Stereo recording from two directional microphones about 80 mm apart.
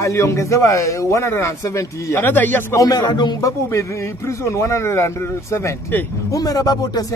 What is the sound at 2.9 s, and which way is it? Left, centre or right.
Speech, left.